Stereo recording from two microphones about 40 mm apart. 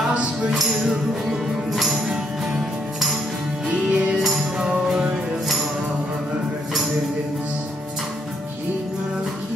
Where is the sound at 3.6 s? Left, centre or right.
Right.